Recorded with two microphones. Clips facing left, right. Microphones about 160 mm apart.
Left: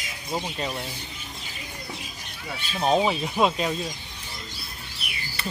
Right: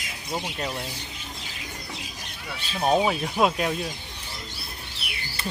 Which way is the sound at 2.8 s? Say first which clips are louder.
Even; 10° right (ahead or behind).